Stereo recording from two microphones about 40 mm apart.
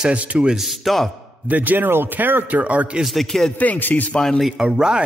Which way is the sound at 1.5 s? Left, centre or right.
Right.